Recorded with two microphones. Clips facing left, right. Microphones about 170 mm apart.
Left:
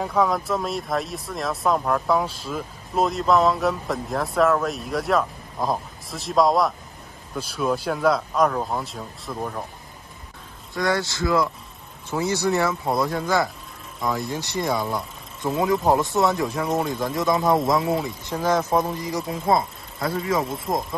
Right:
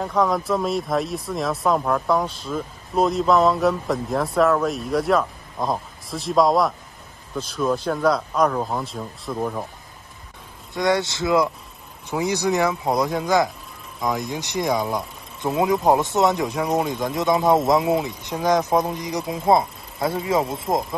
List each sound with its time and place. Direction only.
0.0 s speech: centre (ahead or behind)
10.8 s speech: 20° right (ahead or behind)
16.8 s speech: centre (ahead or behind)
18.9 s speech: 20° right (ahead or behind)